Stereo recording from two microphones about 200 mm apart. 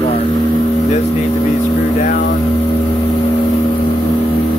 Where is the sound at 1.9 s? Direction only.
40° left (ahead or behind).